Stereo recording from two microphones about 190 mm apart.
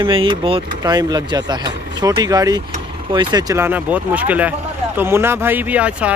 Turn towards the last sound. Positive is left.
turn(degrees=-5)  # may be behind; listen again after turning